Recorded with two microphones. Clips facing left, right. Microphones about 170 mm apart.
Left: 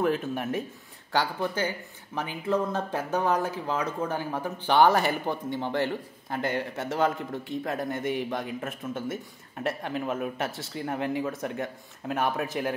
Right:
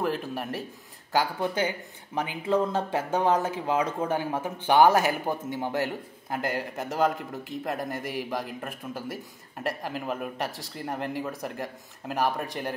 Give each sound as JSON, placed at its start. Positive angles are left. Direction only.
{"t": 0.0, "sound": "speech", "side_deg": 0}
{"t": 1.4, "sound": "speech", "side_deg": -15}
{"t": 3.1, "sound": "speech", "side_deg": -25}
{"t": 3.5, "sound": "speech", "side_deg": -10}